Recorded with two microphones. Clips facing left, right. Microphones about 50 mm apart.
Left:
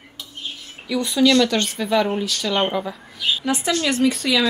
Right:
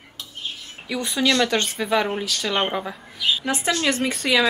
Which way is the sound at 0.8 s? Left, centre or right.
Right.